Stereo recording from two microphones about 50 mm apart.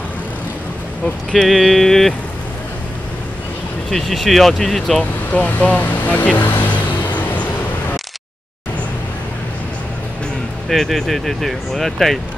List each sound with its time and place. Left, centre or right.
1.4 s speech: centre
3.9 s speech: centre
5.3 s speech: left
7.1 s vehicle: left
10.7 s speech: centre